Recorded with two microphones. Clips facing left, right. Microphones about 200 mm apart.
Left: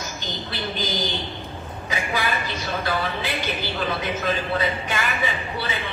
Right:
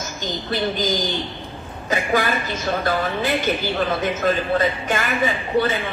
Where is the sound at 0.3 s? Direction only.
45° right (ahead or behind).